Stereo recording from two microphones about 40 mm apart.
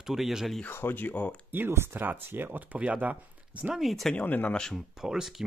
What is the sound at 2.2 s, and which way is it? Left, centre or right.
Speech, right.